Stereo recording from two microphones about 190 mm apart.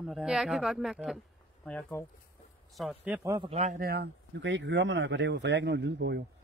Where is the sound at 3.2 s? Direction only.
20° right (ahead or behind).